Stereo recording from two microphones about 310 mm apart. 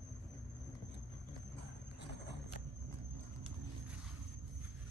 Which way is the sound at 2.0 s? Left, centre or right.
Left.